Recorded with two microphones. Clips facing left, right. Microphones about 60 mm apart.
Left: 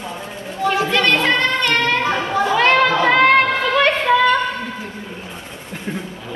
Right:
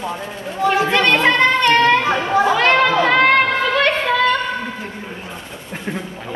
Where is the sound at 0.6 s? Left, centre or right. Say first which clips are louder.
Right 2 dB; right.